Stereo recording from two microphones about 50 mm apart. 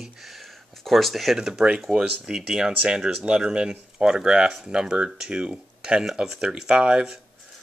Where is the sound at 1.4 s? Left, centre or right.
Centre.